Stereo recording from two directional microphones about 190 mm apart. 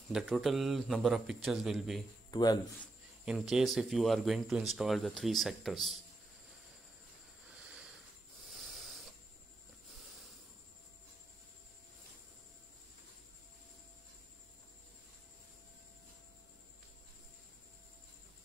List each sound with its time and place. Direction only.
0.1 s speech: centre (ahead or behind)
2.3 s speech: 20° left (ahead or behind)
3.3 s speech: centre (ahead or behind)
7.5 s a sound: 5° right (ahead or behind)
8.5 s hiss: centre (ahead or behind)